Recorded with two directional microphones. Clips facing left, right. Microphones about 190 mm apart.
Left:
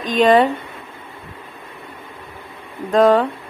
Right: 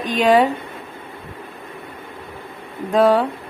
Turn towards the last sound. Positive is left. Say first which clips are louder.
# left 2 dB
turn(degrees=-10)  # may be behind; listen again after turning